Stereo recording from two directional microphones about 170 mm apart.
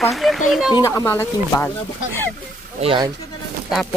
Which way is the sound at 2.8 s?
30° right (ahead or behind).